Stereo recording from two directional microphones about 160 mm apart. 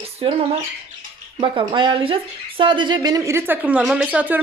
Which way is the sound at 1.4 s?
30° right (ahead or behind).